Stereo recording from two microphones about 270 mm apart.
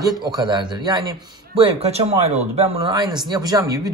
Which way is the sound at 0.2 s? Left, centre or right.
Centre.